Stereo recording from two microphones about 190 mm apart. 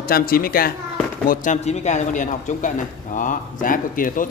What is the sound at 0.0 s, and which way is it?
Speech, 50° left (ahead or behind).